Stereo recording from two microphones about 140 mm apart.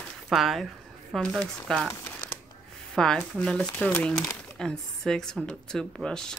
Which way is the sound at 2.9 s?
5° left (ahead or behind).